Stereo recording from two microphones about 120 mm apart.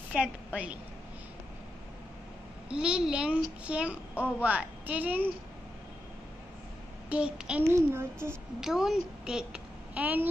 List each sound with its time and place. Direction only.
0.1 s a child's voice: 10° right (ahead or behind)
2.7 s a child's voice: 10° right (ahead or behind)
7.1 s a child's voice: 10° right (ahead or behind)
7.7 s a child's voice: 20° right (ahead or behind)
8.5 s a woman's voice: 5° right (ahead or behind)